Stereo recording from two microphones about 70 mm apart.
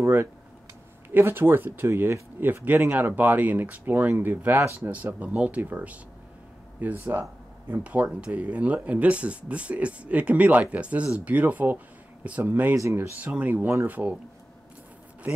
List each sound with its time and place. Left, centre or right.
0.0 s speech: right